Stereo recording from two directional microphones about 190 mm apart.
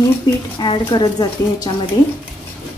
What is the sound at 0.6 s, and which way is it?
A woman's voice, 25° left (ahead or behind).